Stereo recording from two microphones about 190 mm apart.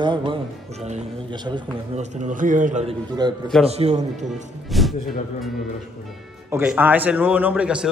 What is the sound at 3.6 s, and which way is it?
Speech, 35° right (ahead or behind).